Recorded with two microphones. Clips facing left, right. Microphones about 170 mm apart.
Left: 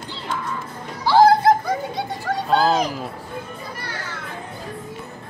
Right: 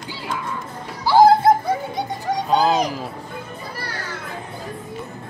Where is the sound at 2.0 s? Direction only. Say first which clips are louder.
Right 1 dB; 20° right (ahead or behind).